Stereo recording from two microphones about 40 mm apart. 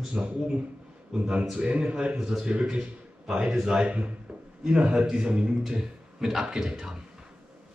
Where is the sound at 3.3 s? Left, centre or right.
Centre.